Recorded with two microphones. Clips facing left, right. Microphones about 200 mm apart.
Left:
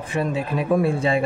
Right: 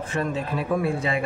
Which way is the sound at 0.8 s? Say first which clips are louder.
Left 5 dB; 30° left (ahead or behind).